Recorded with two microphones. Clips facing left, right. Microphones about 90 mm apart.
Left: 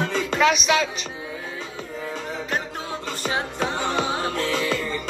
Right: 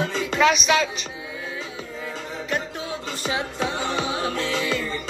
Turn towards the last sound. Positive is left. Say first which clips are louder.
# left 1 dB
turn(degrees=45)  # may be behind; listen again after turning